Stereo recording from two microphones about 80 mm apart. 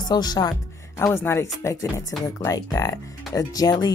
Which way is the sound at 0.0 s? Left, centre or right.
Left.